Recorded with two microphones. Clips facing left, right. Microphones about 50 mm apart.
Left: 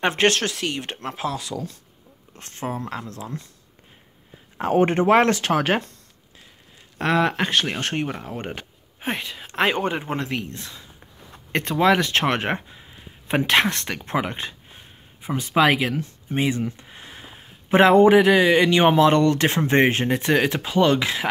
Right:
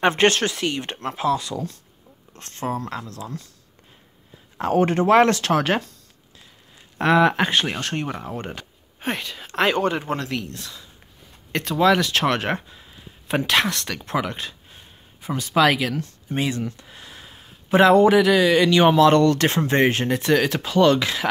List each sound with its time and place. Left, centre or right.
0.0 s speech: centre
2.3 s speech: centre
4.6 s speech: left
5.1 s speech: centre
7.0 s speech: centre
7.9 s speech: centre